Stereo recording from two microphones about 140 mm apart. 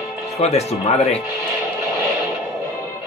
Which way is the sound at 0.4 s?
50° left (ahead or behind).